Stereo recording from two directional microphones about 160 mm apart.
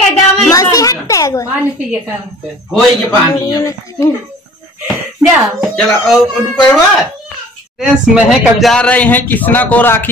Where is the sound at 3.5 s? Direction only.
20° left (ahead or behind).